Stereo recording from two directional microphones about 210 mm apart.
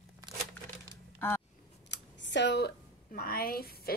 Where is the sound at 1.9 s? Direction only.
55° left (ahead or behind).